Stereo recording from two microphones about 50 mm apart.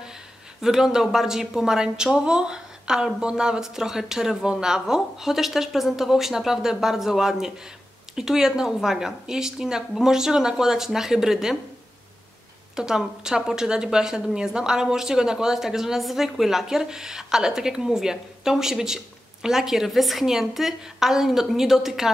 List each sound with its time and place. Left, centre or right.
0.6 s a woman's voice: centre
12.7 s a woman's voice: centre